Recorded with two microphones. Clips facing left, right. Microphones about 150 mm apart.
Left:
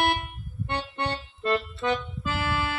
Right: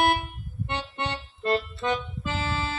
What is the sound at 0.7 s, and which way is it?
Music, 20° right (ahead or behind).